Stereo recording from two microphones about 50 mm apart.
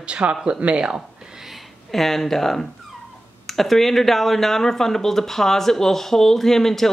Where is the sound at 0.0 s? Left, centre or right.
Right.